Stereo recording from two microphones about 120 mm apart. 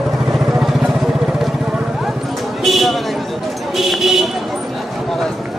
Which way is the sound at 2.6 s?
Centre (ahead or behind).